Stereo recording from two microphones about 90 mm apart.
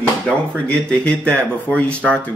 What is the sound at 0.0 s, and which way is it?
Speech, 15° left (ahead or behind).